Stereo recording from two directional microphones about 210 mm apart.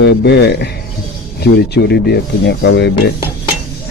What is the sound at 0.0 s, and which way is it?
Speech, 55° left (ahead or behind).